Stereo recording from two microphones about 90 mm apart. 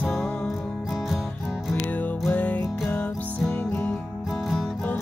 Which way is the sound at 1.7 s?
25° left (ahead or behind).